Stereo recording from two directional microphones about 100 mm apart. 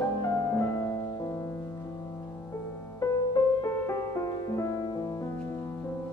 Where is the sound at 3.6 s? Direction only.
25° left (ahead or behind).